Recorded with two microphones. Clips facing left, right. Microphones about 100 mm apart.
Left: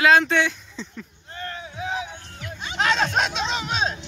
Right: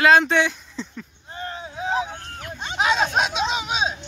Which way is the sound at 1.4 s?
25° right (ahead or behind).